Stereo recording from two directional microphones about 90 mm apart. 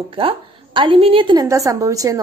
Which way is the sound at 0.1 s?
75° right (ahead or behind).